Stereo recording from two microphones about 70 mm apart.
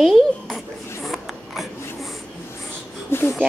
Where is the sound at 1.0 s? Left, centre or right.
Centre.